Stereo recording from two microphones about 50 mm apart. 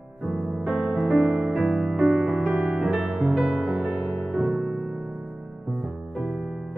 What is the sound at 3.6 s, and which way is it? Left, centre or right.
Music, centre.